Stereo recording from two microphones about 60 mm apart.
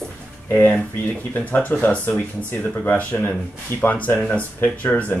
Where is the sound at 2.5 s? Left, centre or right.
Left.